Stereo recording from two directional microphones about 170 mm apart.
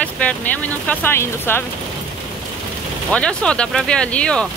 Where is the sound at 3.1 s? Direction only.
5° left (ahead or behind).